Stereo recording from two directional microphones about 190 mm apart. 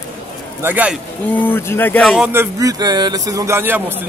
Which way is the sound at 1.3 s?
10° left (ahead or behind).